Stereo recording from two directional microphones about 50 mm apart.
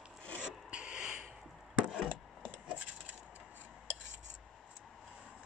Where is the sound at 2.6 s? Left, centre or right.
Right.